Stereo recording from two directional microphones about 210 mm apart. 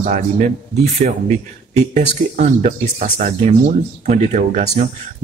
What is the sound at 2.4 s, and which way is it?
Speech, 35° right (ahead or behind).